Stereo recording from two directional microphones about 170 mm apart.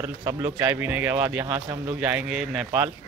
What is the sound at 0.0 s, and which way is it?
Speech, 15° right (ahead or behind).